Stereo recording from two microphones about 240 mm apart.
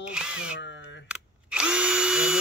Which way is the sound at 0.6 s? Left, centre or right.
Left.